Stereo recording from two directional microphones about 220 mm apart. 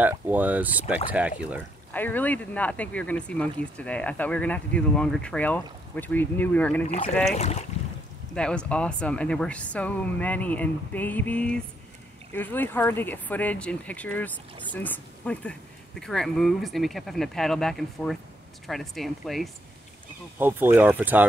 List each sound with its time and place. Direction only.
0.0 s speech: 5° right (ahead or behind)
2.0 s speech: 10° left (ahead or behind)
7.3 s speech: 30° left (ahead or behind)
8.4 s speech: 5° left (ahead or behind)